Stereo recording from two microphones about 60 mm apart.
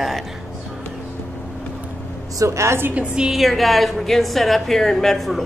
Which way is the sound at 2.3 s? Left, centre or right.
Right.